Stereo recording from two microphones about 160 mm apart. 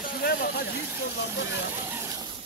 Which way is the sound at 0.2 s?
70° left (ahead or behind).